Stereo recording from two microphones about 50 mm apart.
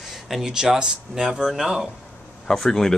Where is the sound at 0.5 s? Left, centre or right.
Centre.